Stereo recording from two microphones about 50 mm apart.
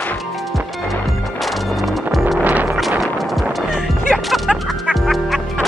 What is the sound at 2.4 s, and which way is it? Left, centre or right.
Music, right.